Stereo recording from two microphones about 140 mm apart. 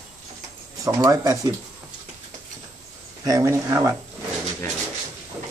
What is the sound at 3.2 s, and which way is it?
Speech, 25° right (ahead or behind).